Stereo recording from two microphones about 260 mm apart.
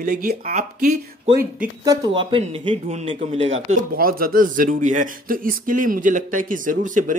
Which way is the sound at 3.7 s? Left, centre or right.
Right.